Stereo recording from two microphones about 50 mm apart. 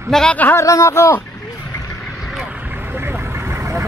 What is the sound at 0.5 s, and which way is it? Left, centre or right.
Speech, left.